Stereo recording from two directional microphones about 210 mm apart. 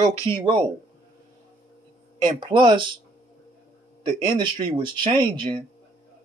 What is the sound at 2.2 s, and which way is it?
Speech, 20° right (ahead or behind).